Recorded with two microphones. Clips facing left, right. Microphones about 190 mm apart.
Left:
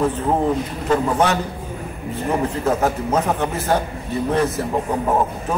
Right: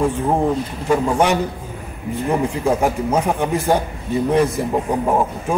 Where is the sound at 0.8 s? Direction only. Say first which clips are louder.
Right 2 dB; 10° right (ahead or behind).